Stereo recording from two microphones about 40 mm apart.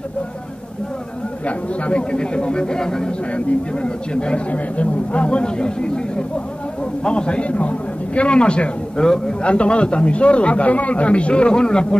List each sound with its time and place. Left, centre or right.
1.9 s speech: left